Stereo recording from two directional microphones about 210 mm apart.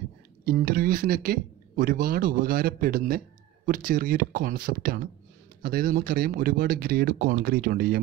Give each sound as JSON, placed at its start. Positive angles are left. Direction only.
{"t": 0.5, "sound": "speech", "side_deg": -40}